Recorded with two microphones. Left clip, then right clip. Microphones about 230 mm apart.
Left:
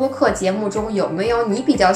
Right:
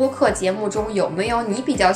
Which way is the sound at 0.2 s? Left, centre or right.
Right.